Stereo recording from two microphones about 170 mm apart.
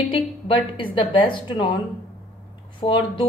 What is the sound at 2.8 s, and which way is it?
Speech, 30° left (ahead or behind).